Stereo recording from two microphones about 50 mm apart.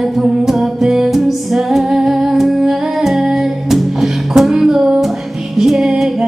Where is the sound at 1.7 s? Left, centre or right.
Centre.